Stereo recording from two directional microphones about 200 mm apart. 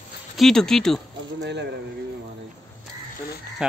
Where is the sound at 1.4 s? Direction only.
60° right (ahead or behind).